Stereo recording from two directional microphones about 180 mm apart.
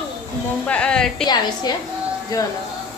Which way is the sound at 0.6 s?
5° left (ahead or behind).